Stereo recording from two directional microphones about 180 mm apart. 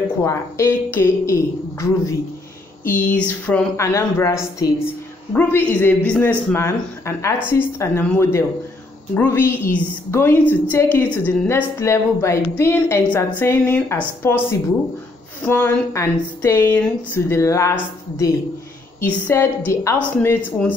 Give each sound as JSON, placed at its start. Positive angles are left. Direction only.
{"t": 0.2, "sound": "a woman's voice", "side_deg": 15}
{"t": 0.9, "sound": "a sound", "side_deg": 15}
{"t": 2.8, "sound": "a woman's voice", "side_deg": 10}
{"t": 18.9, "sound": "a woman's voice", "side_deg": 10}